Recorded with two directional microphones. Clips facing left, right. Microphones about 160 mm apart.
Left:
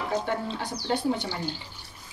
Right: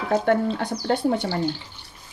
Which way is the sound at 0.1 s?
55° right (ahead or behind).